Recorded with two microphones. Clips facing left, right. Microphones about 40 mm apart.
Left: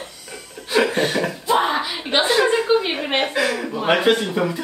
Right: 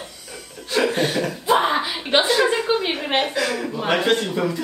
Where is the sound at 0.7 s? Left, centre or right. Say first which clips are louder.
Left 2 dB; centre.